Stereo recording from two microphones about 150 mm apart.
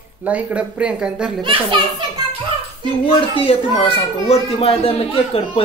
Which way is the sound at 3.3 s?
35° left (ahead or behind).